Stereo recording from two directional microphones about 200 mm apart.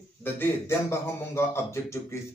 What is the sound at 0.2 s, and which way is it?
A man's voice, 10° left (ahead or behind).